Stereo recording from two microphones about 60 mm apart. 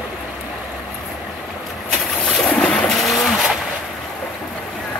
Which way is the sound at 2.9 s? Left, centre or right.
Centre.